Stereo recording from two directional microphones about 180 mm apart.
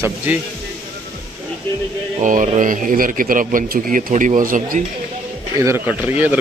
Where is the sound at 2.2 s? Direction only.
45° right (ahead or behind).